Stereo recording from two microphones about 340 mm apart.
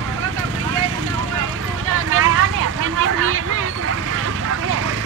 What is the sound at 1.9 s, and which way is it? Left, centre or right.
Vehicle, right.